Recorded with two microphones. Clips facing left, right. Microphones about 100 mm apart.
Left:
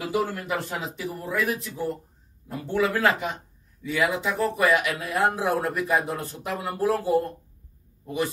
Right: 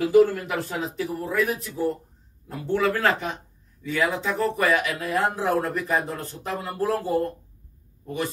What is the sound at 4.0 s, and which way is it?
Speech, 5° left (ahead or behind).